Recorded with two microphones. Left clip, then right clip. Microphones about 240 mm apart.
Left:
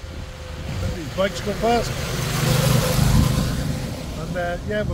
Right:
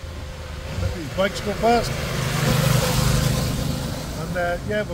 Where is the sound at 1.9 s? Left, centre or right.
Left.